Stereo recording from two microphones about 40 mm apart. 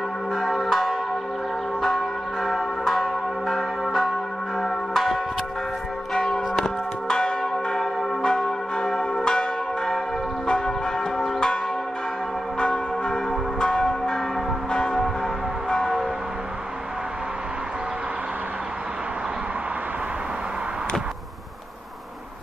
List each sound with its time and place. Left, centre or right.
1.8 s church bell: centre
6.1 s church bell: centre
12.5 s church bell: left